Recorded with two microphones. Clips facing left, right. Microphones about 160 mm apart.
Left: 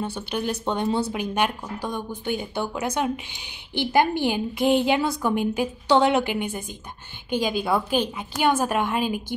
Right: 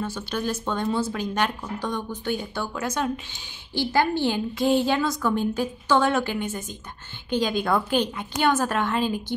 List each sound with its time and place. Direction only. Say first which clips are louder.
0.0 s speech: left 1 dB; 15° left (ahead or behind)